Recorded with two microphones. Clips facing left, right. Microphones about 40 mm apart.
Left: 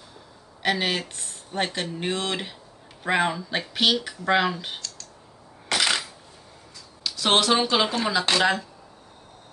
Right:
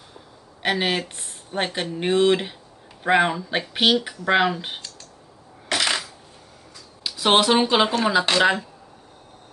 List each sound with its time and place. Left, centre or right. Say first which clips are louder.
0.6 s speech: right 2 dB; centre
7.0 s speech: right 3 dB; centre